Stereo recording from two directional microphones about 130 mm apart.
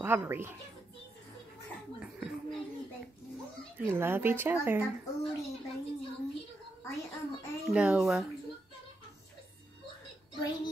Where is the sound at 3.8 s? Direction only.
15° right (ahead or behind).